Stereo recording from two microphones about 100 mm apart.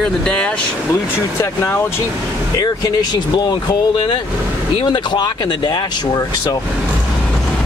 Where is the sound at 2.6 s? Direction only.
40° left (ahead or behind).